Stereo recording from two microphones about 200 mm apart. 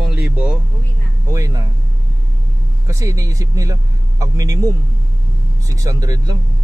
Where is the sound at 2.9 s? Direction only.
15° right (ahead or behind).